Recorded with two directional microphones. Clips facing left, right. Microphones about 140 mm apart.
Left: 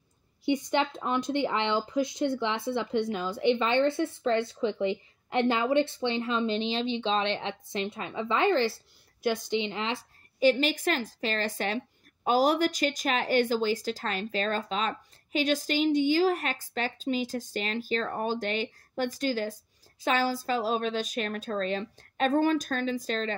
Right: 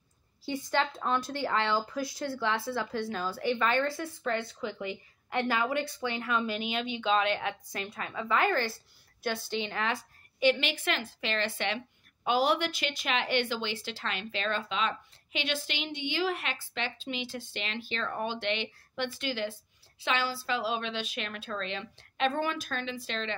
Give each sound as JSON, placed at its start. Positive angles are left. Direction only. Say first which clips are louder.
{"t": 0.5, "sound": "speech", "louder": "left 4 dB", "side_deg": 20}
{"t": 10.4, "sound": "speech", "louder": "left 4 dB", "side_deg": 40}